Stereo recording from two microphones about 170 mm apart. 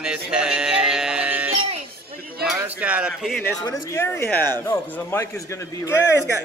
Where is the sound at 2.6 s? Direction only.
10° right (ahead or behind).